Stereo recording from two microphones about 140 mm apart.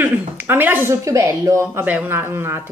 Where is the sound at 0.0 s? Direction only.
15° right (ahead or behind).